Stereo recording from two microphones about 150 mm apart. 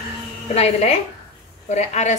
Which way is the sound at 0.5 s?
45° left (ahead or behind).